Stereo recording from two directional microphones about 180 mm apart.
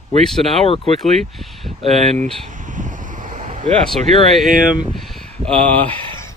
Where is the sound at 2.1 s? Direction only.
40° right (ahead or behind).